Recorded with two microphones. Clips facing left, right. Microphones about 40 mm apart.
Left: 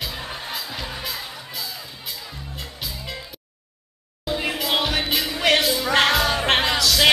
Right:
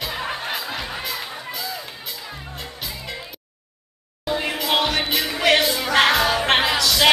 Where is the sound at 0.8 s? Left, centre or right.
Centre.